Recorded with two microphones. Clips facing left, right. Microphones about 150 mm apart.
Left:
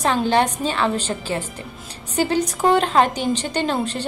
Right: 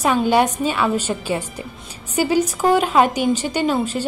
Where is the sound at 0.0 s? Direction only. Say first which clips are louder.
Right 2 dB; 10° right (ahead or behind).